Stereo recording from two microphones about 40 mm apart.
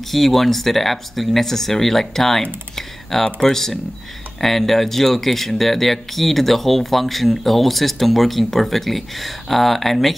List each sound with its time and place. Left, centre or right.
0.1 s speech: centre
2.7 s computer keyboard: centre
3.4 s speech: centre